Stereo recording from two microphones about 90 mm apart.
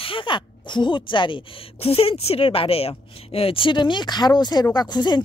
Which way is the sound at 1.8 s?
90° left.